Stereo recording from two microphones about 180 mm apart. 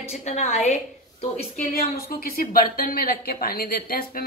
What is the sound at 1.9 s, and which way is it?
Speech, 55° left (ahead or behind).